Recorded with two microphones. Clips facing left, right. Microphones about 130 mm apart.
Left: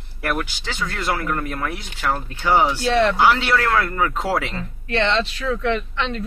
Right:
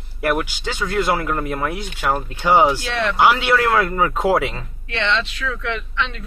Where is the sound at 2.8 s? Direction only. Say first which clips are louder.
Left 5 dB; 35° left (ahead or behind).